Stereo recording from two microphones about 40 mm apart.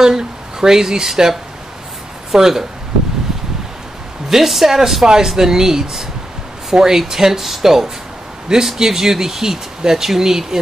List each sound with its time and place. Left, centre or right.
0.0 s speech: centre
4.3 s speech: centre